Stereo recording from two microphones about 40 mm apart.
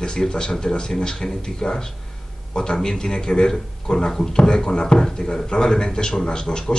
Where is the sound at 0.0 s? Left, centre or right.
Centre.